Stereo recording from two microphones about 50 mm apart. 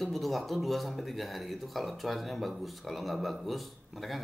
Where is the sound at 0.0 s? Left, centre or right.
Centre.